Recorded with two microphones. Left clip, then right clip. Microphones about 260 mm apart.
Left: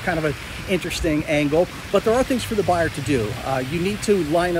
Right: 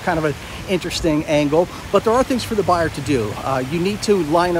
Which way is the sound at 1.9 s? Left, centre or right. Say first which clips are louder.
Right 3 dB; centre.